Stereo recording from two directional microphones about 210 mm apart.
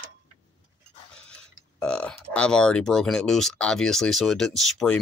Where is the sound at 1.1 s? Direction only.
5° left (ahead or behind).